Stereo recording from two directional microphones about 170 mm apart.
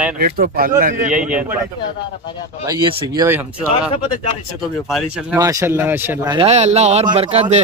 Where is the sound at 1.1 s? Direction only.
5° right (ahead or behind).